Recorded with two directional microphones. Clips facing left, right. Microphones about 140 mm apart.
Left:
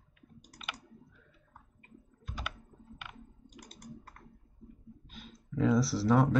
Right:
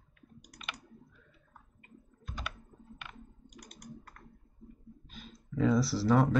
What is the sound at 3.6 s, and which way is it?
Computer keyboard, 30° left (ahead or behind).